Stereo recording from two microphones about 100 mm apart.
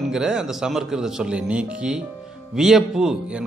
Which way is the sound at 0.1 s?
5° right (ahead or behind).